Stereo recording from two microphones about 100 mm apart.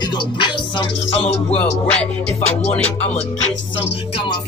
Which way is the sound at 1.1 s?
85° left.